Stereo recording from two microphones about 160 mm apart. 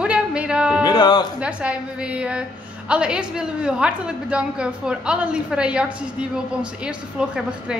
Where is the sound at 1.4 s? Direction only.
5° right (ahead or behind).